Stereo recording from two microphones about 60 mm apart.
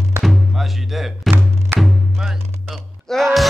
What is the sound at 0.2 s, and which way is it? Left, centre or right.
Music, centre.